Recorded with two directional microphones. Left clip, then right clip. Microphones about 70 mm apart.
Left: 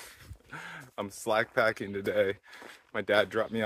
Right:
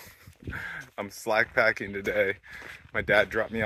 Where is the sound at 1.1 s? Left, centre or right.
Right.